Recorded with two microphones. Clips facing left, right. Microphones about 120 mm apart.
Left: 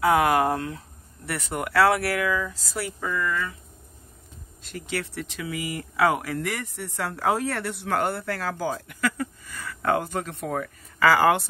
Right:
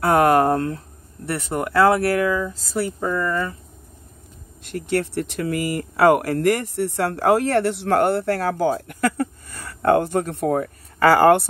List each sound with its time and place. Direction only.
0.1 s speech: 55° right (ahead or behind)
1.7 s speech: 25° right (ahead or behind)
4.7 s speech: 55° right (ahead or behind)
8.8 s a sound: 45° right (ahead or behind)
9.8 s speech: 50° right (ahead or behind)